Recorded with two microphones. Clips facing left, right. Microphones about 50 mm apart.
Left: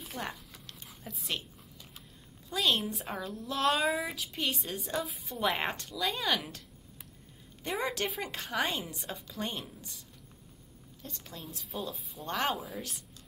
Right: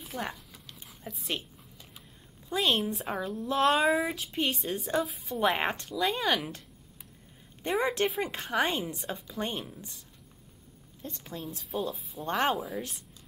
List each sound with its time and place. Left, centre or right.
0.0 s a sound: centre
2.5 s a woman's voice: centre
5.4 s a woman's voice: centre
7.8 s a woman's voice: right
8.5 s a woman's voice: centre
11.0 s a woman's voice: right
11.3 s a woman's voice: centre